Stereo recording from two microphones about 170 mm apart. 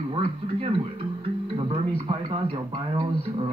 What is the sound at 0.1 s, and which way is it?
Speech, 30° right (ahead or behind).